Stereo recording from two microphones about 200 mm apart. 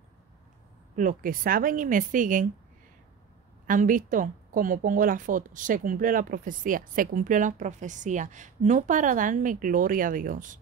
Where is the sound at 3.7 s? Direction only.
40° right (ahead or behind).